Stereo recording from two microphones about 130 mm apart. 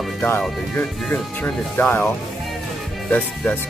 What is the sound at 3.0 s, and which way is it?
Speech, 10° left (ahead or behind).